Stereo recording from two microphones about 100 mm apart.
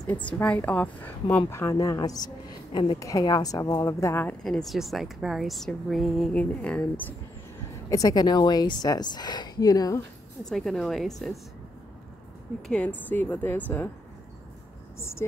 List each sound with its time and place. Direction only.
0.1 s speech: 15° left (ahead or behind)
1.5 s a woman's voice: 30° left (ahead or behind)
4.5 s a woman's voice: centre (ahead or behind)
6.3 s speech: 10° left (ahead or behind)
7.9 s a woman's voice: 40° left (ahead or behind)
10.4 s a woman's voice: 5° left (ahead or behind)
12.6 s speech: 10° left (ahead or behind)
15.0 s speech: 25° left (ahead or behind)